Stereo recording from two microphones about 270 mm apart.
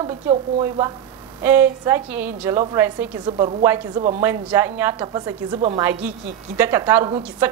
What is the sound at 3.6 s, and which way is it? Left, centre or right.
A woman's voice, centre.